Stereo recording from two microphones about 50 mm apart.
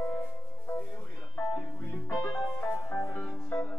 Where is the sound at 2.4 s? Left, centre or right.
Left.